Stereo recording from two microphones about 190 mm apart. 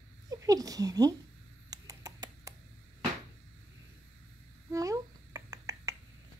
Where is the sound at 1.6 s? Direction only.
20° right (ahead or behind).